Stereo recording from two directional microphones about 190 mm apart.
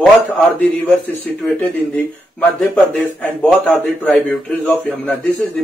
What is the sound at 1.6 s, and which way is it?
A man's voice, 10° left (ahead or behind).